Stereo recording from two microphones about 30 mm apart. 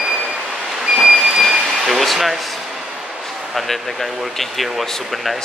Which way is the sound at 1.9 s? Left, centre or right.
Centre.